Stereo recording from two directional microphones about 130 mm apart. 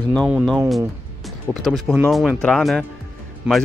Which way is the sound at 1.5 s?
Centre (ahead or behind).